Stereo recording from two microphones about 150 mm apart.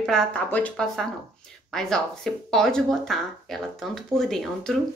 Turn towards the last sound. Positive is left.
turn(degrees=5)  # may be behind; listen again after turning